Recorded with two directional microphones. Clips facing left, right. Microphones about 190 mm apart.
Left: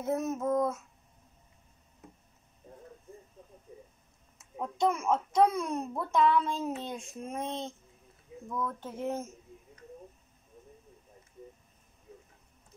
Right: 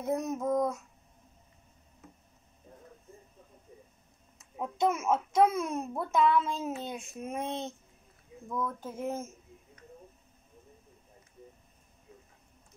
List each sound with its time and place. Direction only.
0.0 s a child's voice: centre (ahead or behind)
4.6 s a child's voice: 5° right (ahead or behind)